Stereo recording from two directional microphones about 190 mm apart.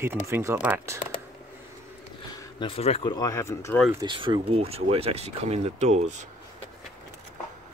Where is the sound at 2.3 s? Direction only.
20° left (ahead or behind).